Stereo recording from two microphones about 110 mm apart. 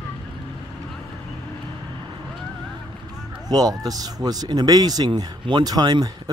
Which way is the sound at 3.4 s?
35° right (ahead or behind).